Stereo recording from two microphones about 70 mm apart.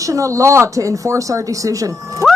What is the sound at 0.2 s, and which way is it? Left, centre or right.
Speech, right.